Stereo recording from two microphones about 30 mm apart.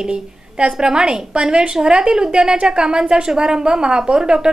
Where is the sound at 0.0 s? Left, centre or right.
Right.